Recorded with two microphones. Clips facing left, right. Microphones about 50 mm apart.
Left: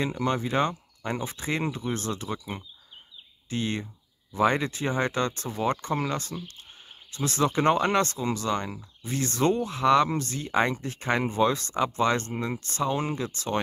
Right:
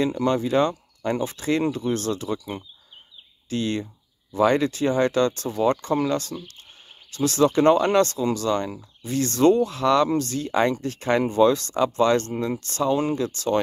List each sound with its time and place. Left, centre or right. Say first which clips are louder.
0.0 s speech: right 5 dB; left